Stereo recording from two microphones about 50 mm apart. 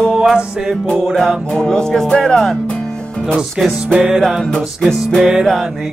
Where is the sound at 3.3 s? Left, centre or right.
Centre.